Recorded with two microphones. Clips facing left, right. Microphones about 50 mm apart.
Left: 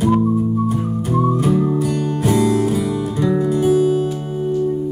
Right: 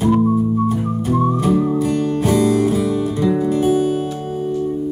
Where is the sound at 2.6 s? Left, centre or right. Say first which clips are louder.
Right 2 dB; right.